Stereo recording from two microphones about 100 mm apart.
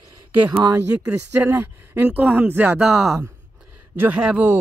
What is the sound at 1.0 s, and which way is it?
Speech, 20° right (ahead or behind).